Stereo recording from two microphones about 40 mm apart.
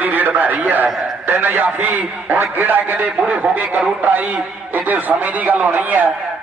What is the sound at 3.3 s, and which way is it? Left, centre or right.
A man's voice, right.